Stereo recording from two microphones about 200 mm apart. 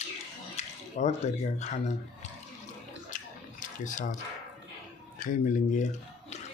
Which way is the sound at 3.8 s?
40° left (ahead or behind).